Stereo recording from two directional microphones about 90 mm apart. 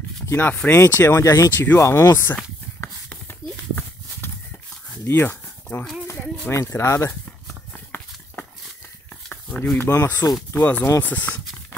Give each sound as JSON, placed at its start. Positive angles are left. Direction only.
{"t": 0.3, "sound": "speech", "side_deg": 20}
{"t": 1.0, "sound": "speech", "side_deg": 35}
{"t": 2.8, "sound": "a sound", "side_deg": 20}
{"t": 6.5, "sound": "speech", "side_deg": 30}
{"t": 7.2, "sound": "a sound", "side_deg": 20}
{"t": 9.3, "sound": "speech", "side_deg": 20}